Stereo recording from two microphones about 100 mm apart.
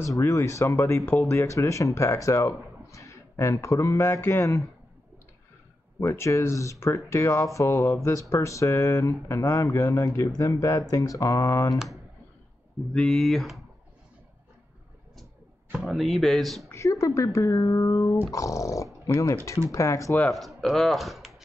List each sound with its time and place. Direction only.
0.0 s speech: 30° left (ahead or behind)
5.9 s speech: 30° left (ahead or behind)
11.7 s speech: centre (ahead or behind)
15.7 s speech: centre (ahead or behind)
16.6 s speech: 30° left (ahead or behind)
20.3 s speech: centre (ahead or behind)